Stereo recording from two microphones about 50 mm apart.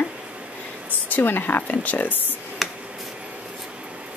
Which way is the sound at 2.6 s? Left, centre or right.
Centre.